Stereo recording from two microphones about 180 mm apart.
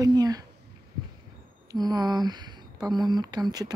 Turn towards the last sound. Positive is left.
turn(degrees=-20)  # may be behind; listen again after turning